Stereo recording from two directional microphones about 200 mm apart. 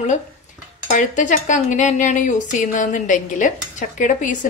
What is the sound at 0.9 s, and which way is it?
A woman's voice, 40° left (ahead or behind).